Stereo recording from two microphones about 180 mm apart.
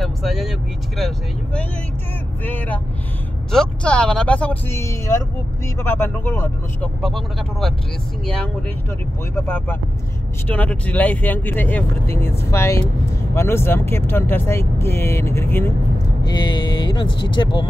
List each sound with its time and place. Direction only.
0.0 s speech: centre (ahead or behind)
7.0 s speech: centre (ahead or behind)
9.3 s speech: 10° left (ahead or behind)
16.3 s speech: 25° left (ahead or behind)